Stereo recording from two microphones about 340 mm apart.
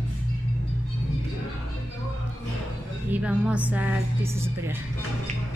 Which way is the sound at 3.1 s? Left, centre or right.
Centre.